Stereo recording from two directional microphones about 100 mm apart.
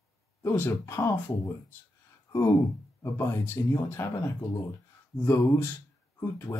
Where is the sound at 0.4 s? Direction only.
25° left (ahead or behind).